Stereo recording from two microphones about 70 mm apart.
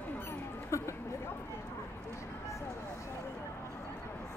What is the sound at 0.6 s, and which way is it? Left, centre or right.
Speech, left.